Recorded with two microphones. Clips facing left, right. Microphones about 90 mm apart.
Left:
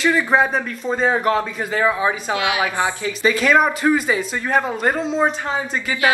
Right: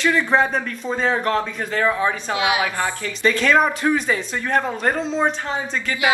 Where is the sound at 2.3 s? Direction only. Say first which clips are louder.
Right 1 dB; 20° right (ahead or behind).